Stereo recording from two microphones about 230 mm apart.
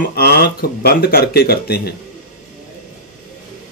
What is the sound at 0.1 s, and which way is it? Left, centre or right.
Speech, left.